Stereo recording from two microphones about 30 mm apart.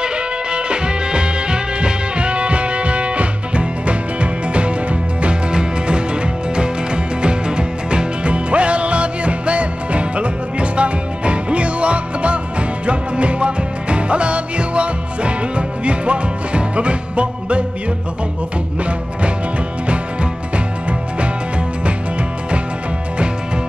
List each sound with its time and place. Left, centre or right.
0.0 s music: right
5.2 s music: right
19.9 s music: right